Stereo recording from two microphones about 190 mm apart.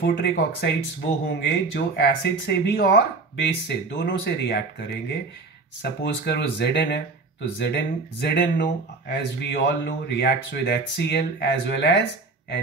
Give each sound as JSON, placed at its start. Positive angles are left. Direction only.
{"t": 0.0, "sound": "speech", "side_deg": 65}